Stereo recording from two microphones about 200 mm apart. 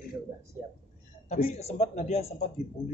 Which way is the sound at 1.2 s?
35° left (ahead or behind).